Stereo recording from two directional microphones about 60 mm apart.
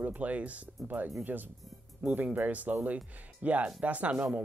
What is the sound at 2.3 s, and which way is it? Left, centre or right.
Speech, right.